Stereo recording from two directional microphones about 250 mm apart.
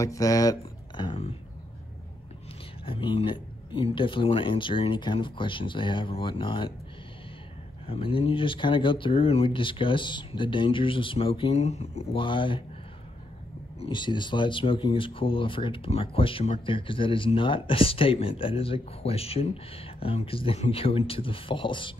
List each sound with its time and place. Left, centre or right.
0.0 s speech: centre
2.8 s speech: left
7.8 s speech: left
13.7 s speech: centre